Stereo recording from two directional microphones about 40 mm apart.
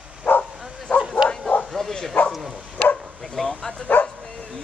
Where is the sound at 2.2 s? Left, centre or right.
Left.